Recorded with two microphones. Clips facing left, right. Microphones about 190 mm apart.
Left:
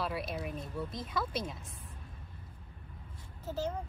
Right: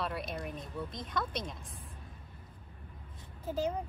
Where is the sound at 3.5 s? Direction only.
15° right (ahead or behind).